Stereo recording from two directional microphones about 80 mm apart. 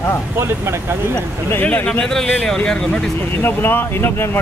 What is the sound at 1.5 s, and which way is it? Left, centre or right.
Speech, left.